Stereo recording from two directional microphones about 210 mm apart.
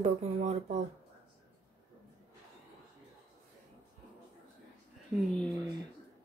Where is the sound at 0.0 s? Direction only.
30° right (ahead or behind).